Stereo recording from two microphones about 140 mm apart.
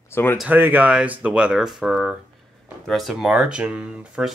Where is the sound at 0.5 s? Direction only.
15° right (ahead or behind).